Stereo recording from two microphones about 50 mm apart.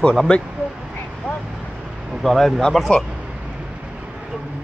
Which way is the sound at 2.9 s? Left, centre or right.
Left.